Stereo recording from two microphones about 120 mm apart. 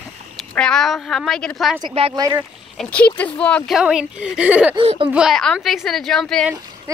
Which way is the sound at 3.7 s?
5° right (ahead or behind).